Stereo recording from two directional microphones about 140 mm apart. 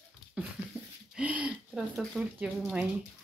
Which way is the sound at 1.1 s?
10° right (ahead or behind).